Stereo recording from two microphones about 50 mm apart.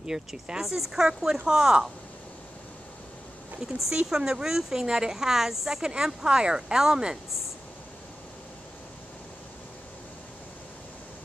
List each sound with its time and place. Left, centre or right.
0.0 s a woman's voice: centre
3.6 s a woman's voice: centre